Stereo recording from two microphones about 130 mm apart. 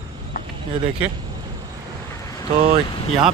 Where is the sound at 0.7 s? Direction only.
40° right (ahead or behind).